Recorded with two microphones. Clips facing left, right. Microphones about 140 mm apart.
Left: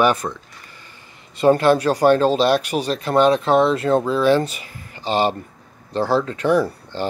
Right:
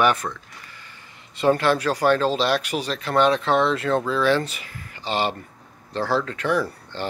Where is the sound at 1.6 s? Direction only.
45° left (ahead or behind).